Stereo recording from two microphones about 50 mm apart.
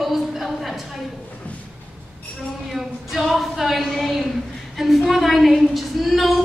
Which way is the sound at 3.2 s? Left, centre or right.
Centre.